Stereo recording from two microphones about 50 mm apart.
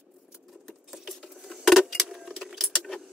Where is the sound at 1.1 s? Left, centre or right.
Centre.